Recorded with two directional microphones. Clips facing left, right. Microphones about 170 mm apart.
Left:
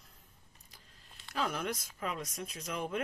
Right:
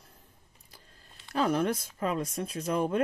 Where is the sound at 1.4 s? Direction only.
35° right (ahead or behind).